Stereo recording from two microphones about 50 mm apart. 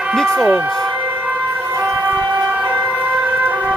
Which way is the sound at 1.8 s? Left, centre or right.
Right.